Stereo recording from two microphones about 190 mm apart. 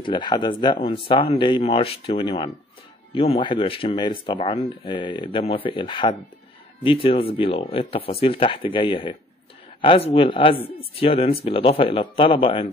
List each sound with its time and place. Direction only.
0.0 s speech: 25° left (ahead or behind)